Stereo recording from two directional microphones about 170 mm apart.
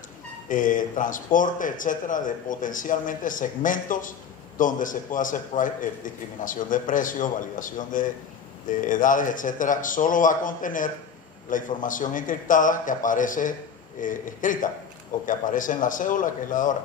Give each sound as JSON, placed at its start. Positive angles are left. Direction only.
{"t": 0.5, "sound": "speech", "side_deg": 50}